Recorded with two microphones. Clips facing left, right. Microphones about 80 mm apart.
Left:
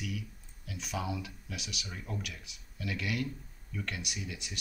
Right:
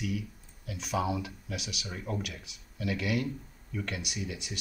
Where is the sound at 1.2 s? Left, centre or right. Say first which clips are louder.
Right 4 dB; centre.